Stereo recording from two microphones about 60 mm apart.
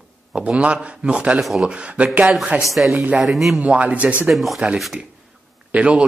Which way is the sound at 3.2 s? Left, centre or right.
Centre.